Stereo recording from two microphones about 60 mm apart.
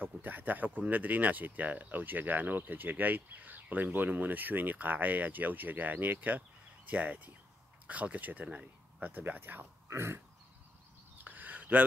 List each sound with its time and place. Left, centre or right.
0.0 s speech: right
9.8 s pig: right
11.2 s a sound: right